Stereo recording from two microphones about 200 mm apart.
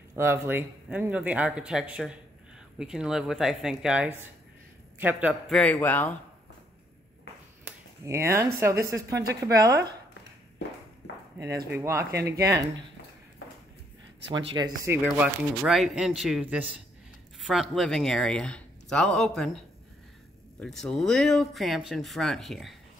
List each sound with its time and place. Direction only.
0.1 s a man's voice: 10° right (ahead or behind)
5.5 s speech: 5° left (ahead or behind)
7.6 s a sound: 15° right (ahead or behind)
8.8 s speech: 15° right (ahead or behind)
11.4 s speech: 55° right (ahead or behind)
11.8 s speech: 15° right (ahead or behind)
14.3 s speech: 20° right (ahead or behind)
15.0 s speech: 5° right (ahead or behind)
20.6 s speech: 5° left (ahead or behind)